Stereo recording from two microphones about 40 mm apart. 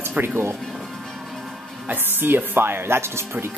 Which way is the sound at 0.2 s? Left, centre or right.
Right.